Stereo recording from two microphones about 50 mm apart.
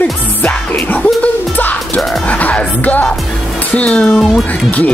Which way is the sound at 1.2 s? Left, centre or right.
Left.